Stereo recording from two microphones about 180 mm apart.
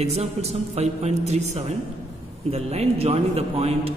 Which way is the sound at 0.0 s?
35° right (ahead or behind).